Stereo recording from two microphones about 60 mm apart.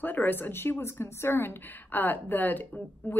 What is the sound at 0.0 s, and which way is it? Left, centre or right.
A woman's voice, left.